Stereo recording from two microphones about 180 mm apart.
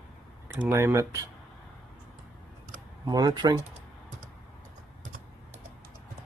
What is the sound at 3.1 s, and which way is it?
Speech, 25° right (ahead or behind).